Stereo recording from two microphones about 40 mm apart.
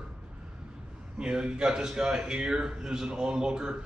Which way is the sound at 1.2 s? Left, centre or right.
Right.